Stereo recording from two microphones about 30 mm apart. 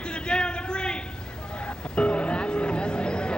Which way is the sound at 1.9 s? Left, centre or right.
Left.